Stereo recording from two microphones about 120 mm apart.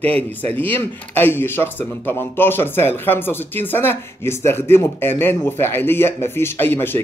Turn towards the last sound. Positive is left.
turn(degrees=15)  # may be behind; listen again after turning